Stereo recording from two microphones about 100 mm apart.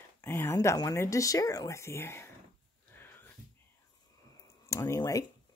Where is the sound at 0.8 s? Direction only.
35° left (ahead or behind).